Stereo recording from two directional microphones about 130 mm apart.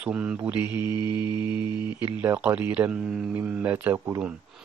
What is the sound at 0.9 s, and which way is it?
Mantra, 35° left (ahead or behind).